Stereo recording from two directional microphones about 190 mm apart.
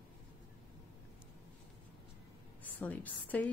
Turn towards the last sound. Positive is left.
turn(degrees=10)  # may be behind; listen again after turning